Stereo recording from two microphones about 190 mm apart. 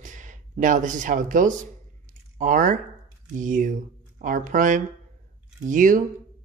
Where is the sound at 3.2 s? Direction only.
45° right (ahead or behind).